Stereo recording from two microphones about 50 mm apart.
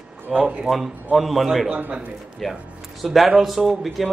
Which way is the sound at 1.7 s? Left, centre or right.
Right.